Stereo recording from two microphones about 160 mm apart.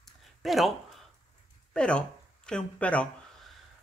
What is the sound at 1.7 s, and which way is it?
Speech, 5° left (ahead or behind).